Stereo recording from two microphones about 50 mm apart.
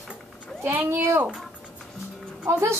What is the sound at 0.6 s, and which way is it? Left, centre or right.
Speech, right.